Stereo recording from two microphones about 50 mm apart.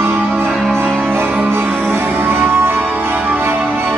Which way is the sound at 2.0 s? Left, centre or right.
Right.